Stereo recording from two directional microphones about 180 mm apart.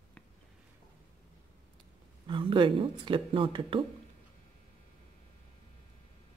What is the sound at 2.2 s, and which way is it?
Speech, 30° right (ahead or behind).